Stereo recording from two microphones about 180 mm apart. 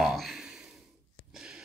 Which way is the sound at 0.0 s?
Centre (ahead or behind).